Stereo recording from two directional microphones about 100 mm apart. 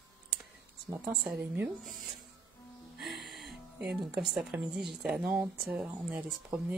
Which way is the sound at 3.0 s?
Centre (ahead or behind).